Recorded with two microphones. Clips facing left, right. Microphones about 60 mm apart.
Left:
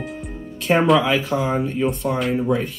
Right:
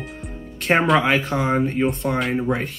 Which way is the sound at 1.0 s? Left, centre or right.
Right.